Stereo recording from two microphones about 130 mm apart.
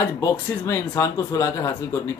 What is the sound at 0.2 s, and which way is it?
Speech, 20° left (ahead or behind).